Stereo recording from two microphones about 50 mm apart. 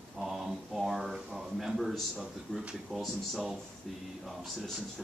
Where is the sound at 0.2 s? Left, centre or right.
Centre.